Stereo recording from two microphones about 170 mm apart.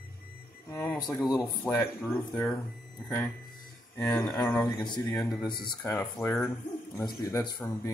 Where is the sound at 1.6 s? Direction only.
Centre (ahead or behind).